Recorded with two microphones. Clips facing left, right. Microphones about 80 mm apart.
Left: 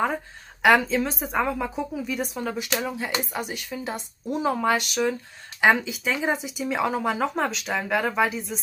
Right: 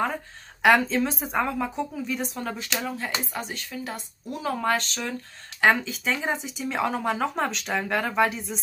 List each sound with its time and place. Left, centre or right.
0.6 s speech: centre; by 4.6 s left
4.6 s speech: centre